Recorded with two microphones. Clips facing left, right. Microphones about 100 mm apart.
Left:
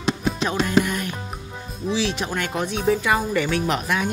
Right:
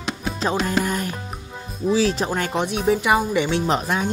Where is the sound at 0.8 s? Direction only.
35° right (ahead or behind).